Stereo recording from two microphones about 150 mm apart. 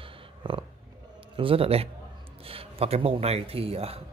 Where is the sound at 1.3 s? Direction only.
35° right (ahead or behind).